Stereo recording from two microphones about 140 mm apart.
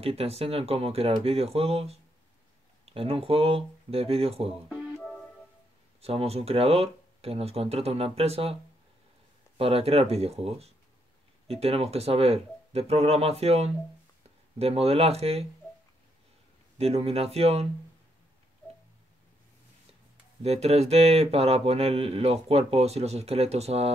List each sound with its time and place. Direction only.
0.0 s speech: 45° right (ahead or behind)
5.0 s music: 5° left (ahead or behind)
5.9 s speech: 45° right (ahead or behind)
9.6 s speech: 45° right (ahead or behind)
16.7 s speech: 45° right (ahead or behind)
20.4 s speech: 50° right (ahead or behind)